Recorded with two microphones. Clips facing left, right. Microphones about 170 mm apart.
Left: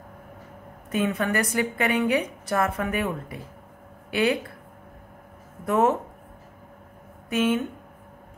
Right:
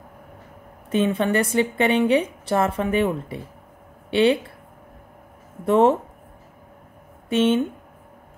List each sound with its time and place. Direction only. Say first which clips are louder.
0.8 s a woman's voice: right 4 dB; 25° right (ahead or behind)
5.7 s a woman's voice: right 5 dB; 30° right (ahead or behind)
7.2 s speech: right 4 dB; 25° right (ahead or behind)